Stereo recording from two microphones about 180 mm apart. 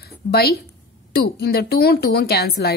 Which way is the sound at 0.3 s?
60° left (ahead or behind).